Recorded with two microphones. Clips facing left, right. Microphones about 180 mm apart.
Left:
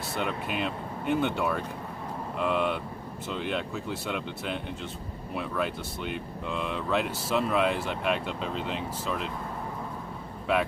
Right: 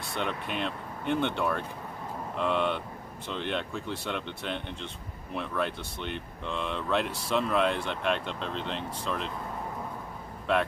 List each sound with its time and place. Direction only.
0.0 s speech: 5° left (ahead or behind)
10.5 s speech: 5° left (ahead or behind)